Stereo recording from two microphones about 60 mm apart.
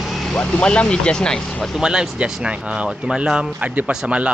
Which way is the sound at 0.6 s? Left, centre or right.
Centre.